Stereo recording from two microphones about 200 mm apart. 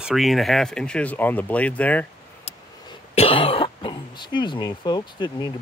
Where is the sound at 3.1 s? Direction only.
30° left (ahead or behind).